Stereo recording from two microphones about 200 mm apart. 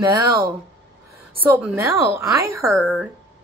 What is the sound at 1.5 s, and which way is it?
Speech, 10° right (ahead or behind).